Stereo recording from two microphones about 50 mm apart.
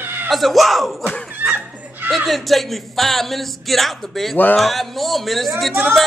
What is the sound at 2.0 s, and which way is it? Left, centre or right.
A man's voice, centre.